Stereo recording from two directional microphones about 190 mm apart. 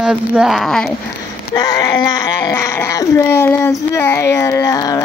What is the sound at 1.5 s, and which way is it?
Speech, 20° left (ahead or behind).